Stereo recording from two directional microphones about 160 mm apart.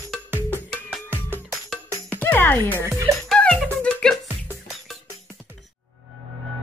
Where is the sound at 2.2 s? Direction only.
10° left (ahead or behind).